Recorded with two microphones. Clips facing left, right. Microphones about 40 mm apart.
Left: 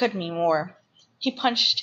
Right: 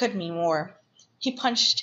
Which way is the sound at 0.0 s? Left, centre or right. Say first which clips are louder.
Left 2 dB; centre.